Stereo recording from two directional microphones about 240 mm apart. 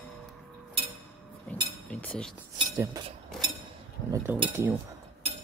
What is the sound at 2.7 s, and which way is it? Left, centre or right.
Cutlery, centre.